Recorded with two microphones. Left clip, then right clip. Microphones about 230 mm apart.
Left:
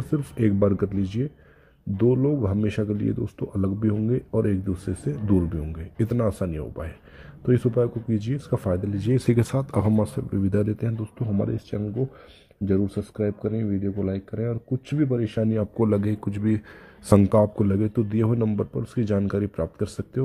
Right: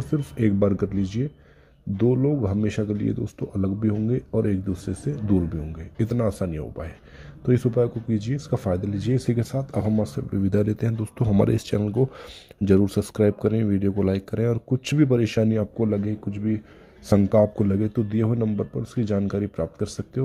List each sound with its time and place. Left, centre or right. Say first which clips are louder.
0.1 s speech: even; centre
11.1 s speech: right 7 dB; centre
15.8 s speech: left 2 dB; centre